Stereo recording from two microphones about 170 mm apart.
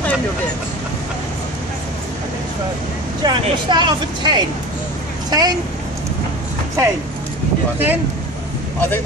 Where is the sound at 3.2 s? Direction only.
25° right (ahead or behind).